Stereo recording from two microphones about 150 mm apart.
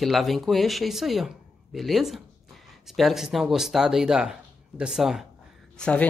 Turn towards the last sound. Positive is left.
turn(degrees=5)  # may be behind; listen again after turning